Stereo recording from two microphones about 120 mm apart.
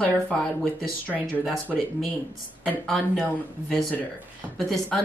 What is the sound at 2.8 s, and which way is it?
Speech, centre (ahead or behind).